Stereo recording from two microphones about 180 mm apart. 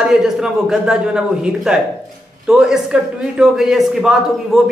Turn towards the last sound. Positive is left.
turn(degrees=0)  # may be behind; listen again after turning